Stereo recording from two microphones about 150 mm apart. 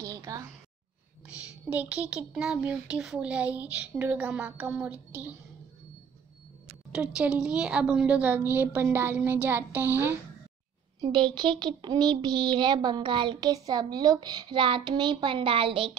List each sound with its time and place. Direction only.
0.0 s a sound: 20° right (ahead or behind)
1.5 s speech: 10° right (ahead or behind)
6.9 s a woman's voice: 5° right (ahead or behind)
11.0 s speech: 30° right (ahead or behind)